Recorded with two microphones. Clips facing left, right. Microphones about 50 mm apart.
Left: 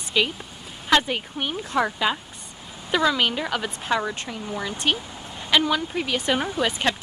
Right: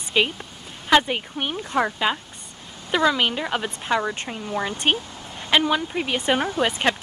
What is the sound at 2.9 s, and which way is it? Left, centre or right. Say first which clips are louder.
Speech: right 1 dB; centre.